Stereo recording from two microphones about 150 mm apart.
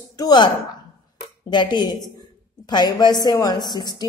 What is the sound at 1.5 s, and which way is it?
A woman's voice, 30° left (ahead or behind).